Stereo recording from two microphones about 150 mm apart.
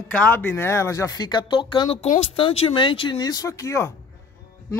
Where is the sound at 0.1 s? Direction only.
10° left (ahead or behind).